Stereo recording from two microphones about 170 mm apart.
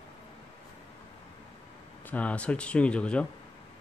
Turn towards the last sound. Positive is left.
turn(degrees=5)  # may be behind; listen again after turning